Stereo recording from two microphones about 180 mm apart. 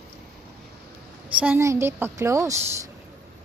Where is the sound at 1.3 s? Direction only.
10° right (ahead or behind).